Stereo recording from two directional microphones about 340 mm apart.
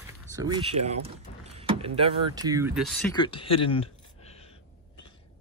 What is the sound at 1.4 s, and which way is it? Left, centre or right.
Power windows, centre.